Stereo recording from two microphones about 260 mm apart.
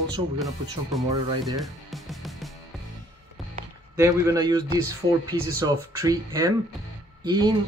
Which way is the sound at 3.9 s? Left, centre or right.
Centre.